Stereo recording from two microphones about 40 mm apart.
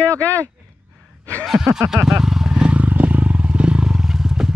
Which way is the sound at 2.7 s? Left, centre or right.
Right.